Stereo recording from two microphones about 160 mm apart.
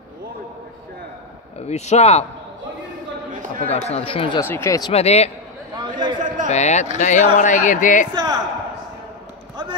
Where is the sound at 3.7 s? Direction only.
40° left (ahead or behind).